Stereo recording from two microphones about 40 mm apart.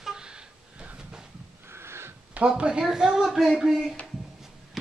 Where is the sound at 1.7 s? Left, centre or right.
Right.